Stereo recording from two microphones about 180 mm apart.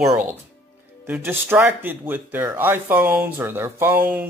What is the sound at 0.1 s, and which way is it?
Speech, 10° right (ahead or behind).